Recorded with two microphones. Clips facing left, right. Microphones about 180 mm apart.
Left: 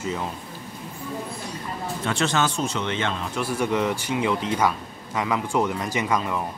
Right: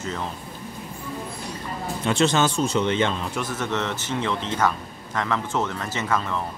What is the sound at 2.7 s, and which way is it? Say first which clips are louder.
Speech: right 5 dB; 35° right (ahead or behind).